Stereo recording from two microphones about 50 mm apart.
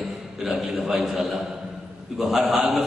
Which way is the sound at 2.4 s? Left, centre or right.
Right.